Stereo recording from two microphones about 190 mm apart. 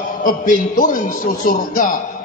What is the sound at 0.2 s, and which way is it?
A man's voice, 45° left (ahead or behind).